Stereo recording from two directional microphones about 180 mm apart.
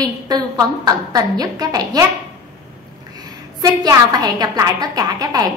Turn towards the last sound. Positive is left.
turn(degrees=-20)  # may be behind; listen again after turning